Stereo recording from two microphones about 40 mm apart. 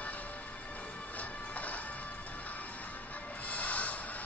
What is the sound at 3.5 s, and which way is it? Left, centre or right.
Music, left.